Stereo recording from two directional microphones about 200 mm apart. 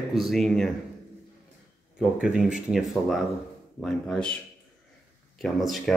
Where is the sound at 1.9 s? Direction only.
5° right (ahead or behind).